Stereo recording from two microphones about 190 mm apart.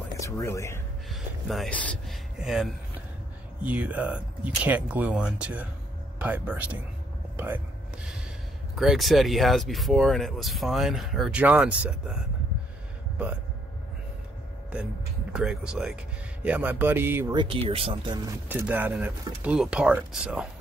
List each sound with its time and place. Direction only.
0.2 s speech: 15° left (ahead or behind)
1.0 s speech: centre (ahead or behind)
7.3 s a sound: 10° right (ahead or behind)
8.7 s speech: centre (ahead or behind)
15.3 s speech: 5° right (ahead or behind)
17.4 s speech: 30° right (ahead or behind)
18.5 s speech: 10° right (ahead or behind)